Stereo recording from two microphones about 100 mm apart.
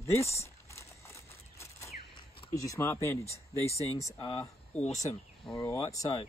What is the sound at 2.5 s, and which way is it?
Speech, 30° left (ahead or behind).